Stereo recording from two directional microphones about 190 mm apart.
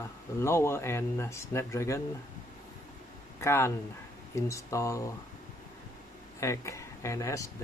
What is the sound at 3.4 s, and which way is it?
Speech, 15° left (ahead or behind).